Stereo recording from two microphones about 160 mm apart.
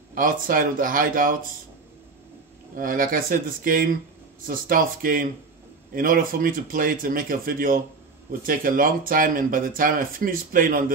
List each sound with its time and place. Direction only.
0.1 s speech: 60° right (ahead or behind)
2.7 s speech: 60° right (ahead or behind)